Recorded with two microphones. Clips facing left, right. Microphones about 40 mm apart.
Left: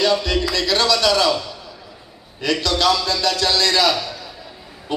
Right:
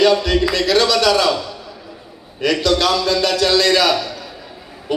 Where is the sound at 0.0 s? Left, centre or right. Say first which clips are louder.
Right 4 dB; right.